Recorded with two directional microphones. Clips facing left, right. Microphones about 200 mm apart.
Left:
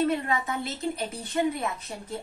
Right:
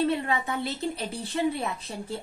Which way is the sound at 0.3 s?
30° right (ahead or behind).